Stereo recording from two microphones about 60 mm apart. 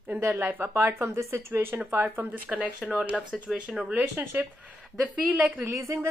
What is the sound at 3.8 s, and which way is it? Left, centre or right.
Speech, right.